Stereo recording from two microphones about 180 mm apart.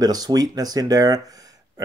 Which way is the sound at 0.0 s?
20° right (ahead or behind).